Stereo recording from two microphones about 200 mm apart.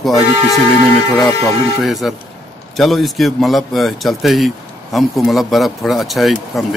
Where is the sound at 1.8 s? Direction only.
Centre (ahead or behind).